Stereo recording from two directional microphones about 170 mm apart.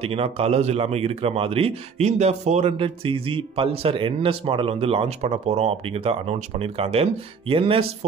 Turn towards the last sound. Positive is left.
turn(degrees=-30)  # may be behind; listen again after turning